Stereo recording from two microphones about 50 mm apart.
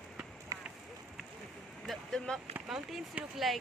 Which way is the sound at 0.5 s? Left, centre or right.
Right.